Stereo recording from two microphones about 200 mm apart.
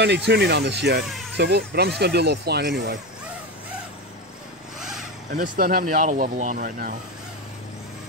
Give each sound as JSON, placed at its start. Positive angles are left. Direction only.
{"t": 0.0, "sound": "speech", "side_deg": -60}
{"t": 5.3, "sound": "speech", "side_deg": -45}